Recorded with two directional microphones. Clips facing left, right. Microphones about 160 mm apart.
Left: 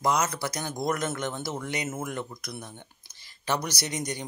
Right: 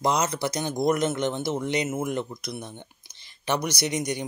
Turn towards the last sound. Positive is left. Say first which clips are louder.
# right 5 dB
turn(degrees=-15)  # may be behind; listen again after turning